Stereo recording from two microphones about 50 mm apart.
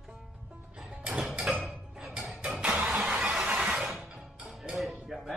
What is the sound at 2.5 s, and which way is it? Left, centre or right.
Engine starting, right.